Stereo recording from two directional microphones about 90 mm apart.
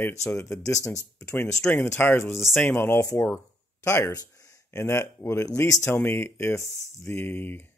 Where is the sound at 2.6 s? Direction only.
25° left (ahead or behind).